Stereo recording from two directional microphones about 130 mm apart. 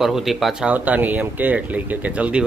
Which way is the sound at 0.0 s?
Centre (ahead or behind).